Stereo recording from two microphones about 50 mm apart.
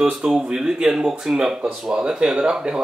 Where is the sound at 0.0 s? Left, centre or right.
Centre.